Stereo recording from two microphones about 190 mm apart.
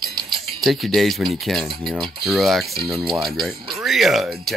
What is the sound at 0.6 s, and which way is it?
Speech, centre (ahead or behind).